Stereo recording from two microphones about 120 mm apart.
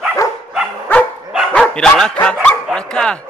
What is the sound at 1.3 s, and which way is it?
Dog, 5° right (ahead or behind).